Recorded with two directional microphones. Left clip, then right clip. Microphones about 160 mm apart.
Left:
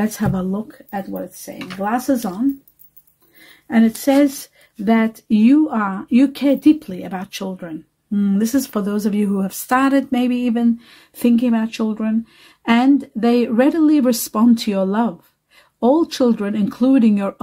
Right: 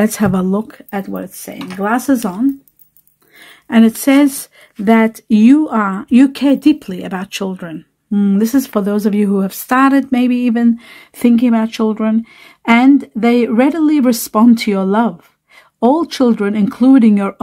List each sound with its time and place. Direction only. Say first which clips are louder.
0.0 s speech: right 7 dB; 45° right (ahead or behind)
3.4 s speech: right 5 dB; 35° right (ahead or behind)